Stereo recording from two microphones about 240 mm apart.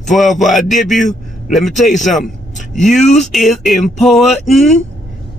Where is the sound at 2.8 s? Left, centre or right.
Centre.